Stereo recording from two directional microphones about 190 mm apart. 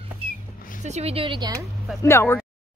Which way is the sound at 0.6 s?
45° left (ahead or behind).